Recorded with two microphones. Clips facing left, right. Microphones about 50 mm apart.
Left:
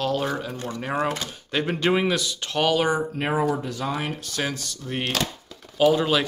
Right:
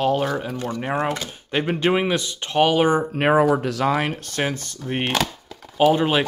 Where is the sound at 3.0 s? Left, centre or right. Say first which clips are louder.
Right 7 dB; right.